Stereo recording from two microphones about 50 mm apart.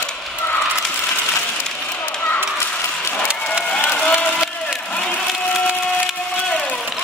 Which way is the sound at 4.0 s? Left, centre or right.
Left.